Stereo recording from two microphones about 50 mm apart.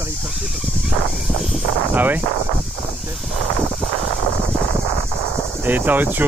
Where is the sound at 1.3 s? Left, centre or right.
Centre.